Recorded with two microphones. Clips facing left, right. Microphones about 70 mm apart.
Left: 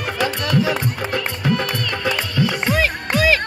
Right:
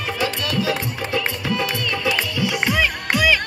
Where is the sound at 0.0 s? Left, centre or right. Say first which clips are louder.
Left 2 dB; left.